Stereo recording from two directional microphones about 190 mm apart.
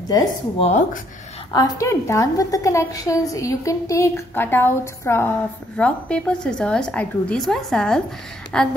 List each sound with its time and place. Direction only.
0.1 s speech: 30° left (ahead or behind)
1.5 s a woman's voice: 20° left (ahead or behind)